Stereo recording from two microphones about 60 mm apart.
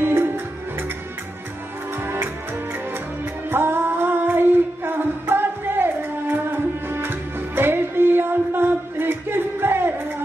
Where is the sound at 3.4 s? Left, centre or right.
Right.